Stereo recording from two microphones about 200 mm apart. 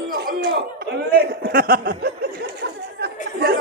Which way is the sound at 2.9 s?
55° right (ahead or behind).